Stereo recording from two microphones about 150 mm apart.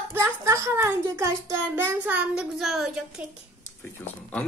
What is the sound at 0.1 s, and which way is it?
A child's voice, 20° right (ahead or behind).